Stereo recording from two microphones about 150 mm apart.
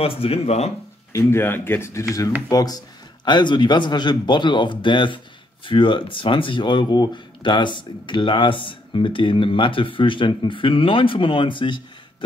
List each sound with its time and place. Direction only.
0.0 s speech: 40° left (ahead or behind)
1.1 s speech: 15° left (ahead or behind); by 11.8 s 35° left (ahead or behind)